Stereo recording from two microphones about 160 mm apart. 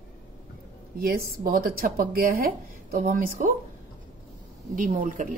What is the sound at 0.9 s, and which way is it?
Speech, 65° right (ahead or behind).